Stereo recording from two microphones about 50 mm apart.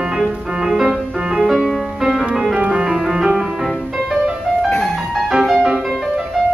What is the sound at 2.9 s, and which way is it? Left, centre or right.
Music, centre.